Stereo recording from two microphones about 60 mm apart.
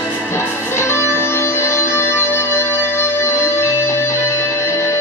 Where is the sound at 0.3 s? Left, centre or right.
Left.